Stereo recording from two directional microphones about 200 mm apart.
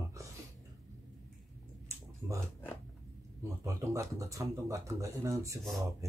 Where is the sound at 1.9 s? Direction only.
15° right (ahead or behind).